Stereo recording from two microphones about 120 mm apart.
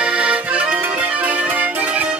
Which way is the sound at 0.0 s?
10° right (ahead or behind).